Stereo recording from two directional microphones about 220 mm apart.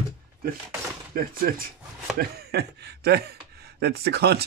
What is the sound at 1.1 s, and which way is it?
Speech, 40° right (ahead or behind).